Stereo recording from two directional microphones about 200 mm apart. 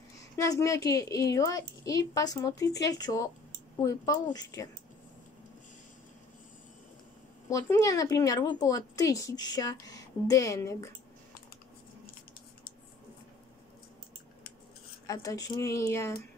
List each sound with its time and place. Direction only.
0.4 s a woman's voice: 15° left (ahead or behind)
7.4 s speech: 15° left (ahead or behind)
15.0 s speech: 20° left (ahead or behind)